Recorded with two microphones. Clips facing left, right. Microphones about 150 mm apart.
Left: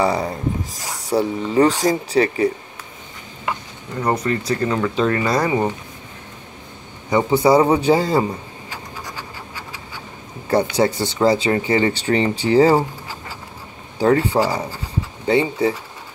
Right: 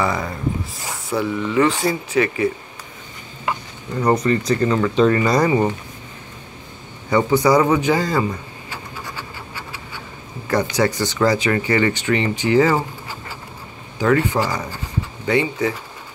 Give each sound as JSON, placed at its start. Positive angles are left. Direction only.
{"t": 0.0, "sound": "speech", "side_deg": 35}
{"t": 4.0, "sound": "speech", "side_deg": 5}
{"t": 7.1, "sound": "speech", "side_deg": 20}
{"t": 10.5, "sound": "speech", "side_deg": 25}
{"t": 13.9, "sound": "speech", "side_deg": 35}